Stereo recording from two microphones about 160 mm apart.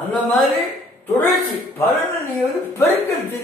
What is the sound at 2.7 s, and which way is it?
Speech, 15° left (ahead or behind).